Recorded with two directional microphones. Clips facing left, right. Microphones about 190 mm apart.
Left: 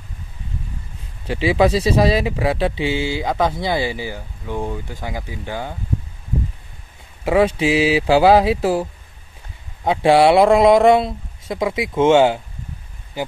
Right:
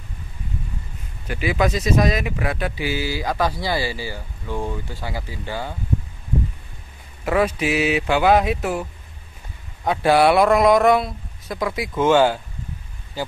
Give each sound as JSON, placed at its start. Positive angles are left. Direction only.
{"t": 1.2, "sound": "speech", "side_deg": 30}
{"t": 7.2, "sound": "speech", "side_deg": 25}
{"t": 9.8, "sound": "speech", "side_deg": 25}